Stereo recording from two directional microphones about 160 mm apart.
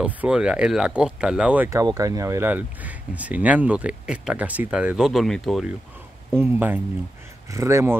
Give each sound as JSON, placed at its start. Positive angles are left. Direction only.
{"t": 0.0, "sound": "speech", "side_deg": -5}
{"t": 1.7, "sound": "speech", "side_deg": -20}
{"t": 6.3, "sound": "speech", "side_deg": -15}